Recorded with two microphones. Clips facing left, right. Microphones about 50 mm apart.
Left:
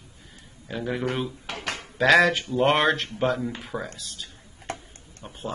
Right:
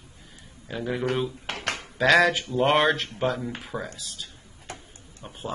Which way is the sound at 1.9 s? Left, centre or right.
Centre.